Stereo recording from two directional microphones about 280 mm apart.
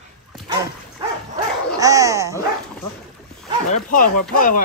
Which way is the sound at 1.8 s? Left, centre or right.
Centre.